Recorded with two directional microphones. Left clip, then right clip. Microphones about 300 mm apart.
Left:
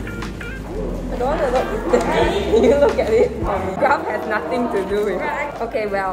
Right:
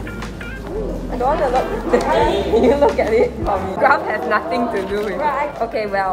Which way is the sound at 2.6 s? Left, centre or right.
Centre.